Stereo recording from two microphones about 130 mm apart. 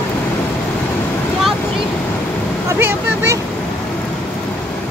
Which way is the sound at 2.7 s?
20° right (ahead or behind).